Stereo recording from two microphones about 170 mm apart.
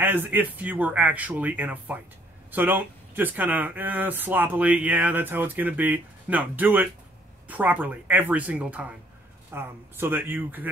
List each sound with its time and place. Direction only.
0.0 s speech: 10° right (ahead or behind)